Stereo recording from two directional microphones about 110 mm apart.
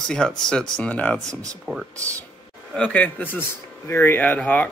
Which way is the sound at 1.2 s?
30° right (ahead or behind).